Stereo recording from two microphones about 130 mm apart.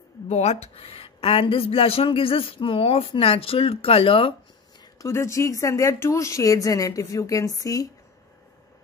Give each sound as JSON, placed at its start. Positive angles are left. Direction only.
{"t": 0.3, "sound": "speech", "side_deg": 55}
{"t": 4.9, "sound": "speech", "side_deg": 25}